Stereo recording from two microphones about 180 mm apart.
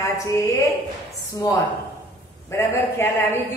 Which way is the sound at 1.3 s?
20° left (ahead or behind).